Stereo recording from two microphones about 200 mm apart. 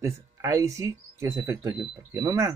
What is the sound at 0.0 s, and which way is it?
Speech, 15° right (ahead or behind).